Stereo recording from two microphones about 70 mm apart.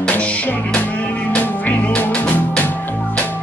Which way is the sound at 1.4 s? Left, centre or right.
Left.